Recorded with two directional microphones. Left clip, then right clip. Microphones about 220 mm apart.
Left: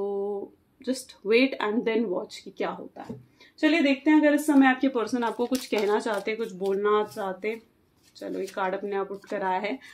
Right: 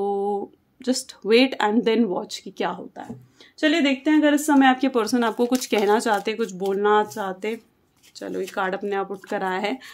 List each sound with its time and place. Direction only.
0.0 s speech: 50° right (ahead or behind)